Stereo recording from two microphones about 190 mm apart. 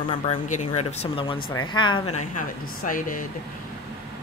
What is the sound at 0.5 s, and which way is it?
Speech, 35° left (ahead or behind).